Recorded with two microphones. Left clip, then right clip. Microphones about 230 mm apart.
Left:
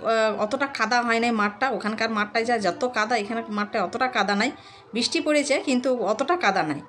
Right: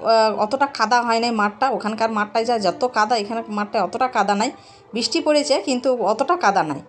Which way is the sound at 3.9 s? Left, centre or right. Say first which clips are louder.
Right 4 dB; right.